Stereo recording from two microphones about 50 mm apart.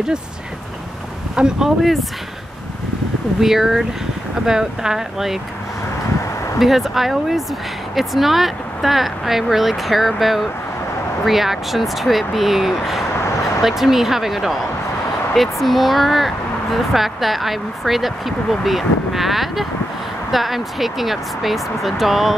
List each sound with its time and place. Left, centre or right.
1.3 s speech: centre
1.8 s speech: centre
3.3 s speech: centre
6.6 s speech: centre